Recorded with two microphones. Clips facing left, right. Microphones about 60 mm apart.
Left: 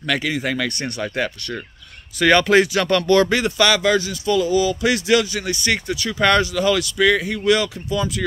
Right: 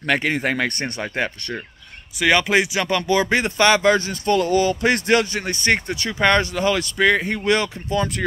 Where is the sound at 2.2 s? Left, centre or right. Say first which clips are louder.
Left 3 dB; centre.